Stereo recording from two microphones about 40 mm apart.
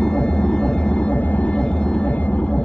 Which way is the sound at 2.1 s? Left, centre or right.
Left.